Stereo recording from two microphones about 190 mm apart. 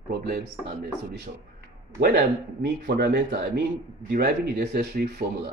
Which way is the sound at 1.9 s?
65° right (ahead or behind).